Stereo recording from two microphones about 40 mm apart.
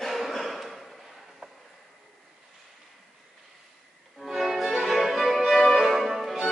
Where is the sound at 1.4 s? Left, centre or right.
Right.